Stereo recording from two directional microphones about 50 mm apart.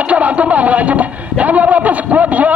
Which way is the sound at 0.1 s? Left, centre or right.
Right.